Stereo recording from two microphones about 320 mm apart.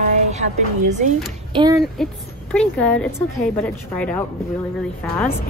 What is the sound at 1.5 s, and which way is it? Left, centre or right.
Speech, centre.